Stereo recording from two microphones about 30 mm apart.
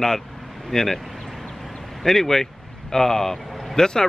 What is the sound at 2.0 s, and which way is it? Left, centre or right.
Speech, centre.